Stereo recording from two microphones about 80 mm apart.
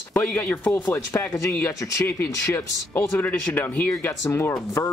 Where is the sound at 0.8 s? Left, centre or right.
Left.